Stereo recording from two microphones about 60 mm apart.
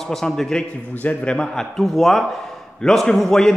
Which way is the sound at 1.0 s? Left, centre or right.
Centre.